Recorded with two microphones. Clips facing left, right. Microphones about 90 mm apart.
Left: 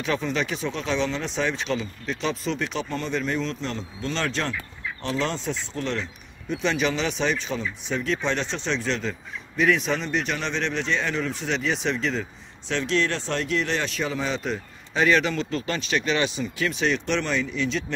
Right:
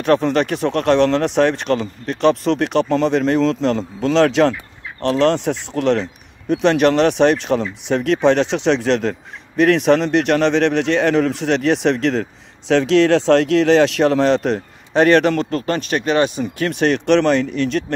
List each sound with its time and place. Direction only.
0.0 s a man's voice: 60° right (ahead or behind); by 4.6 s 90° right
5.2 s a man's voice: 70° right (ahead or behind)
6.5 s speech: 65° right (ahead or behind)
9.6 s a man's voice: 65° right (ahead or behind)